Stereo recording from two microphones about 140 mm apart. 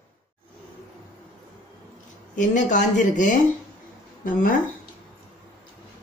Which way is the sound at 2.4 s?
60° left (ahead or behind).